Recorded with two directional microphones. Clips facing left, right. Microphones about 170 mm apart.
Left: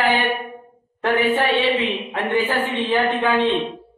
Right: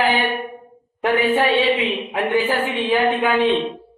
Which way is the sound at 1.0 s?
15° right (ahead or behind).